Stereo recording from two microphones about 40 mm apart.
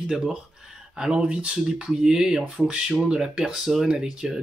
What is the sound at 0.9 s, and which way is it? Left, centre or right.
Speech, right.